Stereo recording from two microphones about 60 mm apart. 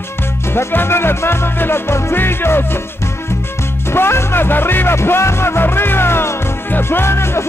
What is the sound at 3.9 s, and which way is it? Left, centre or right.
Music, left.